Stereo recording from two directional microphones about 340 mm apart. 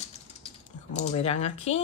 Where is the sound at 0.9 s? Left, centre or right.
Centre.